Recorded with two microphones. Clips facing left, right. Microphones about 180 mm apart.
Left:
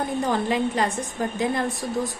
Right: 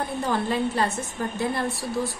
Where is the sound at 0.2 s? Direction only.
15° left (ahead or behind).